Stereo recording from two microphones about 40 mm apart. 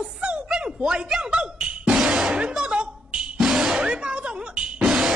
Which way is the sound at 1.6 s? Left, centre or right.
Right.